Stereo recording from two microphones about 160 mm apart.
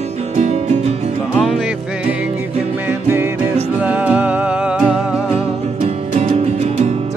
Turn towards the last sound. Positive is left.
turn(degrees=-45)  # may be behind; listen again after turning